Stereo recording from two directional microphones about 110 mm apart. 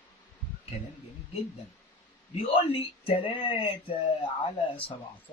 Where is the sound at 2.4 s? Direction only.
60° left (ahead or behind).